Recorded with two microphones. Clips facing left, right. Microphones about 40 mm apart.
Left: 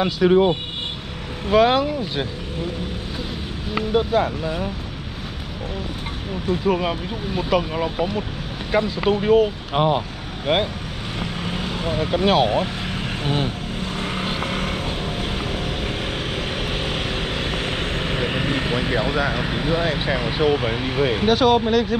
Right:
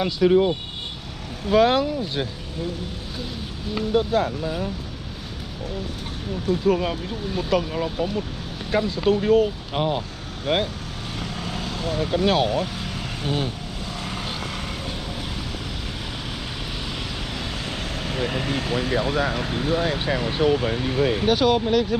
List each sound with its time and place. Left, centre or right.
0.0 s speech: left
1.5 s speech: left
3.9 s speech: left
6.5 s speech: left
8.7 s speech: centre
9.0 s speech: left
11.1 s vehicle: left
16.6 s vehicle: left
21.3 s speech: left